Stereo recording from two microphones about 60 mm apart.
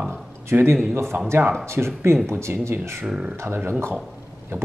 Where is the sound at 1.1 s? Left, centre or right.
Right.